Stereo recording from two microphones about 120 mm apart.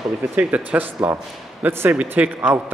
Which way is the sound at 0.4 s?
10° right (ahead or behind).